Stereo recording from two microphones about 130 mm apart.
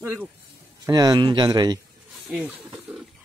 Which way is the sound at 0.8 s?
30° right (ahead or behind).